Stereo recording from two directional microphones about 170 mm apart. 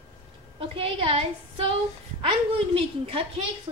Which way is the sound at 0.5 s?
30° right (ahead or behind).